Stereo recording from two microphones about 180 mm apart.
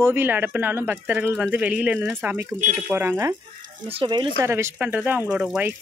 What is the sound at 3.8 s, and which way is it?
Speech, 25° right (ahead or behind).